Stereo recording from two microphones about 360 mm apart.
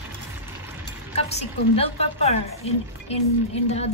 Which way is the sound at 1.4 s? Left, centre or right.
Centre.